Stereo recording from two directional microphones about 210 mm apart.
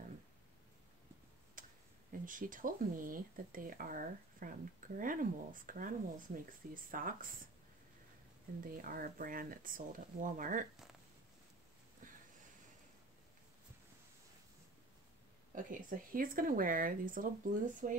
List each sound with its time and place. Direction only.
1.6 s tick-tock: 40° right (ahead or behind)
2.2 s speech: 40° right (ahead or behind)
8.7 s speech: 40° right (ahead or behind)
12.0 s a sound: 40° right (ahead or behind)
15.5 s speech: 40° right (ahead or behind)